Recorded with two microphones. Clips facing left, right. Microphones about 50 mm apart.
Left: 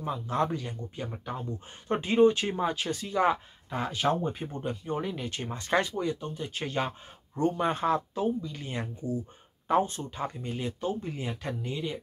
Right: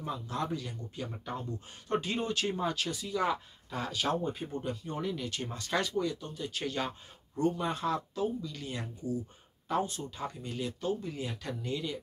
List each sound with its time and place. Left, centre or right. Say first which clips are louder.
0.3 s speech: left 8 dB; left
2.9 s speech: left 5 dB; left